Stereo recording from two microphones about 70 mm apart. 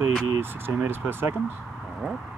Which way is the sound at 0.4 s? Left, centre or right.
Right.